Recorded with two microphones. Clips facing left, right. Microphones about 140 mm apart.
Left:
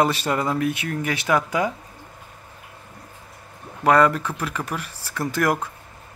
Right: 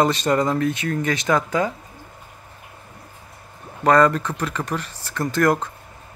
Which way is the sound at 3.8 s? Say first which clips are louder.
Right 1 dB; 10° left (ahead or behind).